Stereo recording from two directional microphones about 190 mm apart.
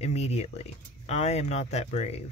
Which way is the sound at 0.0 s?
35° left (ahead or behind).